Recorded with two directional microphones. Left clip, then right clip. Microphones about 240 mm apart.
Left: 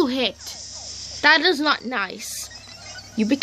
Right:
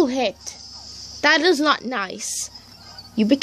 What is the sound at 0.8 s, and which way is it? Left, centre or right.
Cricket, left.